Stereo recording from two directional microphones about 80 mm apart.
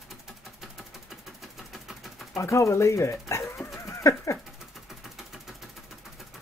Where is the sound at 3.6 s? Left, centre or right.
Left.